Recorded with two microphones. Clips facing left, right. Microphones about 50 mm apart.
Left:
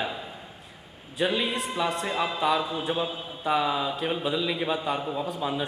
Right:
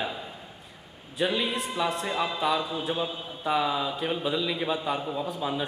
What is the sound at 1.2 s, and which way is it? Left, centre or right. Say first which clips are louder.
Speech: left 1 dB; centre.